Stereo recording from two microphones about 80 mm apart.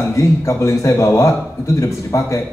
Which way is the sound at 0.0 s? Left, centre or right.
Left.